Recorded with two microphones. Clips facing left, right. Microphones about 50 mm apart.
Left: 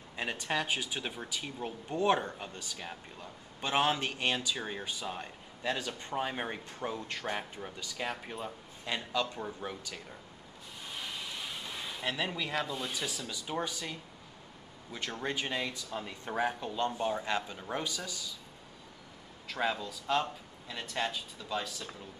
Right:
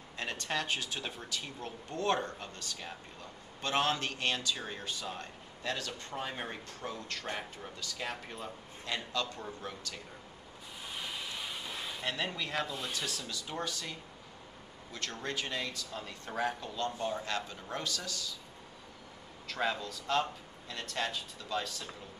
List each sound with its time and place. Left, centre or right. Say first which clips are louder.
0.2 s speech: left 2 dB; centre
10.9 s speech: even; centre
19.4 s speech: left 1 dB; centre